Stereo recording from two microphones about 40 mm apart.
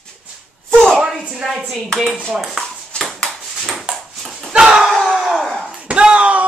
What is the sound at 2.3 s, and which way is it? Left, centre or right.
Speech, centre.